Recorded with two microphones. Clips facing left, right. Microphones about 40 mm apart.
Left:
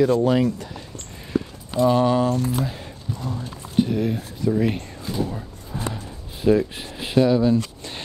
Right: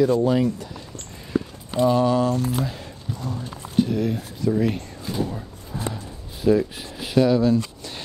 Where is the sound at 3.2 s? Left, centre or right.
Left.